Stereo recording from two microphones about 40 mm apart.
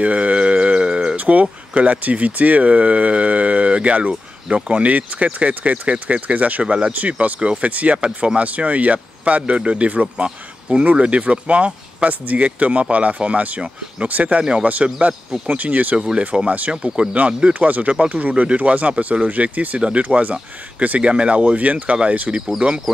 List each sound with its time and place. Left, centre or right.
0.0 s music: right
0.4 s a sound: right
1.1 s a sound: right
1.4 s speech: right
6.6 s speech: right
6.9 s speech: right
14.0 s speech: right
16.0 s speech: right
17.6 s speech: right
19.8 s speech: right
21.0 s speech: right